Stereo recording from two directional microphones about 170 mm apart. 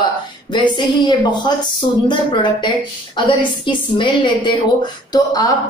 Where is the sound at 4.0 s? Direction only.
30° left (ahead or behind).